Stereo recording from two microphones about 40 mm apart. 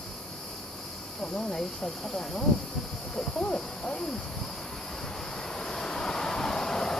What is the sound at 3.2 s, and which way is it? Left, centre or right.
Hoot, left.